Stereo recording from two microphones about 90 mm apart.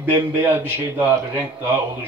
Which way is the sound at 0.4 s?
25° right (ahead or behind).